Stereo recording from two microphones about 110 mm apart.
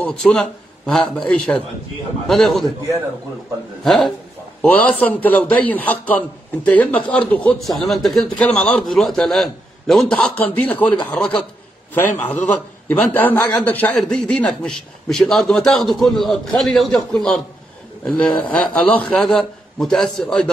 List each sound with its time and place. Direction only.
0.0 s a man's voice: 5° left (ahead or behind)
3.8 s a man's voice: centre (ahead or behind)
4.6 s a man's voice: 10° left (ahead or behind)
8.4 s a man's voice: 10° left (ahead or behind)